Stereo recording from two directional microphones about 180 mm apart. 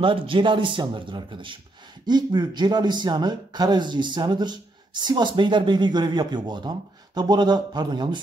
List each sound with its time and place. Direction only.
0.0 s a man's voice: 30° right (ahead or behind)